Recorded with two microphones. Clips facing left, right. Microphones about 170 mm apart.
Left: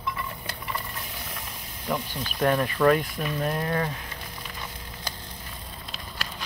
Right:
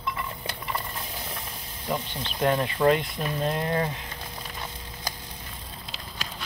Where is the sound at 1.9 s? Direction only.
25° right (ahead or behind).